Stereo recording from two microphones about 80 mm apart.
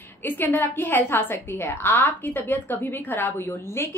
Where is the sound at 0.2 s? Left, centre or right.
Left.